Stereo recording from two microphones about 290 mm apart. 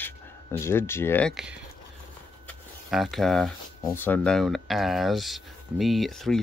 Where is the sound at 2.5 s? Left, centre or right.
Centre.